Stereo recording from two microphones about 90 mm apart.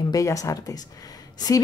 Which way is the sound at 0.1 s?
40° left (ahead or behind).